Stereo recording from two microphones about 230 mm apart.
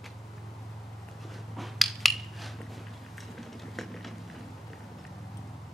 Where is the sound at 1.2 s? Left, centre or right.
Centre.